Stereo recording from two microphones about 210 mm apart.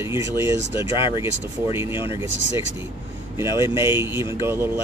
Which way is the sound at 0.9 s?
25° left (ahead or behind).